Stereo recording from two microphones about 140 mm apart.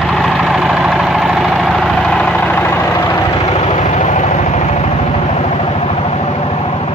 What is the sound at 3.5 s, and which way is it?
Vehicle, 55° left (ahead or behind).